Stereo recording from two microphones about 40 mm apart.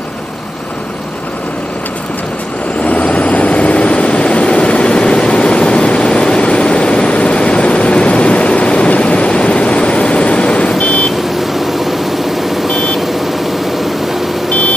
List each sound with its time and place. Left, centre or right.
2.8 s vehicle: left
11.3 s vehicle: centre
12.6 s a sound: centre